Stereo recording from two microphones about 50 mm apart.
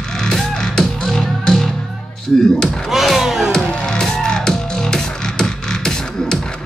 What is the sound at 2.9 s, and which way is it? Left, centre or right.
Music, centre.